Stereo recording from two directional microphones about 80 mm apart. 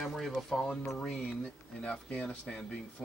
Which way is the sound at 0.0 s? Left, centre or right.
Centre.